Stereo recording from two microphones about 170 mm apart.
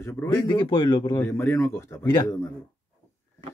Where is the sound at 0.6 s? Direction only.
25° left (ahead or behind).